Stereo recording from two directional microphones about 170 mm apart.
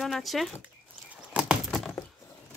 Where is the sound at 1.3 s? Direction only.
5° right (ahead or behind).